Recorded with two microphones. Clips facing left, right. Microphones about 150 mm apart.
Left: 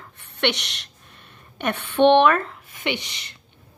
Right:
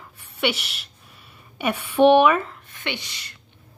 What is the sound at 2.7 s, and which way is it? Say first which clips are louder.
Speech: left 5 dB; 15° left (ahead or behind).